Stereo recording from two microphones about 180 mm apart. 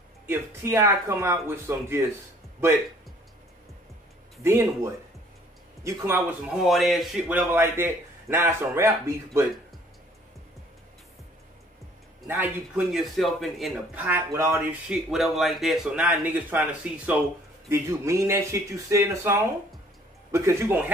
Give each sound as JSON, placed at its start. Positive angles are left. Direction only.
{"t": 0.3, "sound": "a man's voice", "side_deg": -15}
{"t": 4.4, "sound": "a man's voice", "side_deg": -15}
{"t": 6.6, "sound": "a man's voice", "side_deg": 0}
{"t": 12.3, "sound": "a man's voice", "side_deg": -10}